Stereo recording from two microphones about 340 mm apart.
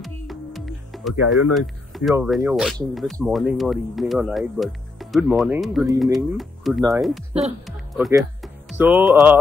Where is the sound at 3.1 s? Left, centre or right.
Centre.